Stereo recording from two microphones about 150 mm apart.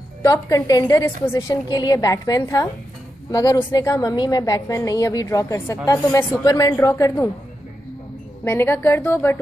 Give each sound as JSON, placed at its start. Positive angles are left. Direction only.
{"t": 0.2, "sound": "a woman's voice", "side_deg": 25}
{"t": 8.5, "sound": "a woman's voice", "side_deg": 15}